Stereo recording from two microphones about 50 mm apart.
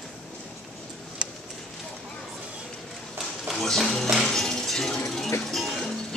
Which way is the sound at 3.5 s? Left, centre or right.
Centre.